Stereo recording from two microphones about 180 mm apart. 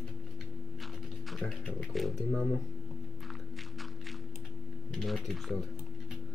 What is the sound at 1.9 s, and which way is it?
Speech, centre (ahead or behind).